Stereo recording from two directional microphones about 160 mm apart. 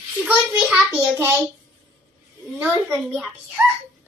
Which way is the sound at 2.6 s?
10° right (ahead or behind).